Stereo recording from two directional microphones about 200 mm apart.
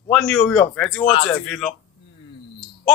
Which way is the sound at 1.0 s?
35° left (ahead or behind).